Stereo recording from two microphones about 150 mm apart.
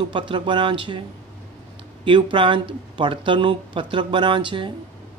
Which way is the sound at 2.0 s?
35° right (ahead or behind).